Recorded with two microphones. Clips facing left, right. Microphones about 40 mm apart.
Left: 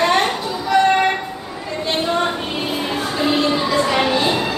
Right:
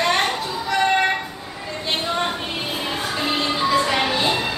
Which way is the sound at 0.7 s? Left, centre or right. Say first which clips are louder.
Left 6 dB; centre.